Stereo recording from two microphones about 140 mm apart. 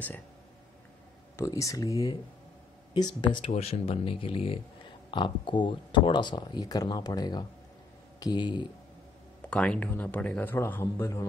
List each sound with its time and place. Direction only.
1.3 s speech: 20° left (ahead or behind)
3.2 s speech: 35° left (ahead or behind)
9.5 s a man's voice: 5° left (ahead or behind)